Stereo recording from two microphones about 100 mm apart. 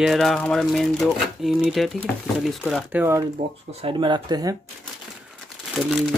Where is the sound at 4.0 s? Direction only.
50° right (ahead or behind).